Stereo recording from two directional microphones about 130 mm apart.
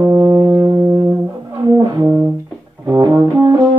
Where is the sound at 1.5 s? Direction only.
30° right (ahead or behind).